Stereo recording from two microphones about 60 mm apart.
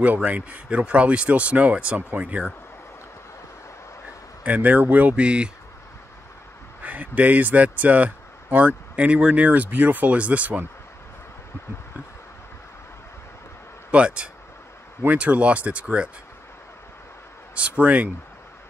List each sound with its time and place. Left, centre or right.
0.0 s a man's voice: right
4.4 s a man's voice: right
6.8 s a man's voice: right
13.9 s a man's voice: centre
17.6 s a man's voice: right